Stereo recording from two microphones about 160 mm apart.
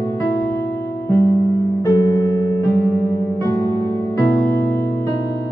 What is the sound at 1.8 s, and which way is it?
Music, 20° left (ahead or behind).